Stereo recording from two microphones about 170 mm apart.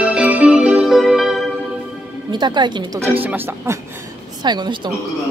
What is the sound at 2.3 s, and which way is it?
Speech, 25° right (ahead or behind).